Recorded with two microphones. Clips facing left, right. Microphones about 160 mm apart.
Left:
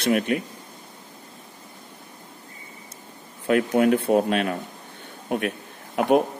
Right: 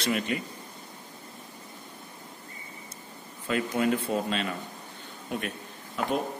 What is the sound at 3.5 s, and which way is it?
A man's voice, 60° left (ahead or behind).